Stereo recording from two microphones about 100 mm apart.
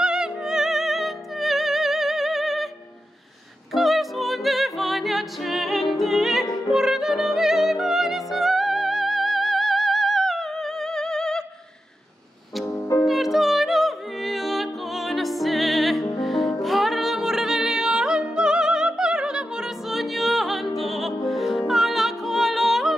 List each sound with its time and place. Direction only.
0.0 s music: 5° right (ahead or behind)
3.7 s music: centre (ahead or behind)
12.6 s music: 30° left (ahead or behind)
13.0 s music: centre (ahead or behind)